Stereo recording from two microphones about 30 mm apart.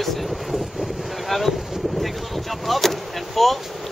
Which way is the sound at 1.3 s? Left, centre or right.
Centre.